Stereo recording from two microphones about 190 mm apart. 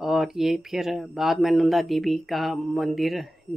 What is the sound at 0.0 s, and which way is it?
Speech, centre (ahead or behind).